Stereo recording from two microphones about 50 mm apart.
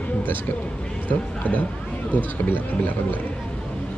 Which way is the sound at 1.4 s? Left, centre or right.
Left.